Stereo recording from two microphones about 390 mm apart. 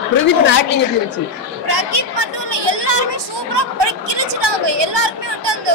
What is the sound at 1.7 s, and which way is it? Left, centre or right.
Chatter, right.